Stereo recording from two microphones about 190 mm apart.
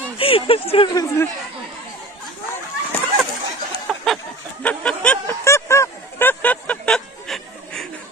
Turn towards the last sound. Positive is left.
turn(degrees=5)  # may be behind; listen again after turning